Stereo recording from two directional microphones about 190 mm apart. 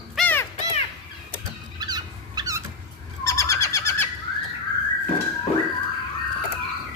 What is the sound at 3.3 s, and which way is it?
Owl, 15° left (ahead or behind).